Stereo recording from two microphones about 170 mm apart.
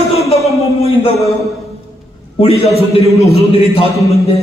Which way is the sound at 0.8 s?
35° left (ahead or behind).